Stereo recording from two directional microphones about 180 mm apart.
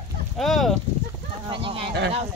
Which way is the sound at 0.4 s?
Centre (ahead or behind).